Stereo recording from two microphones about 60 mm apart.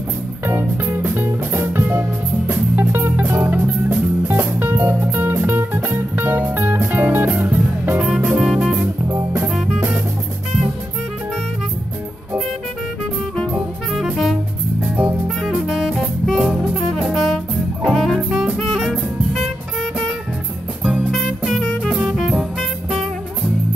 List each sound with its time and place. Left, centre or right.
0.5 s music: right
8.3 s music: centre
9.0 s music: right
9.5 s music: centre
14.1 s music: centre
15.6 s music: centre
17.1 s music: centre
17.8 s jazz: centre
18.8 s music: centre
20.8 s music: centre
21.5 s music: centre